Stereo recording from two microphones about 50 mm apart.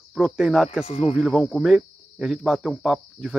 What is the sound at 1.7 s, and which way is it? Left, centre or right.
Speech, centre.